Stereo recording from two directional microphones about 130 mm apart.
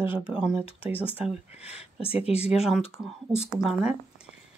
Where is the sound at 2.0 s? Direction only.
50° left (ahead or behind).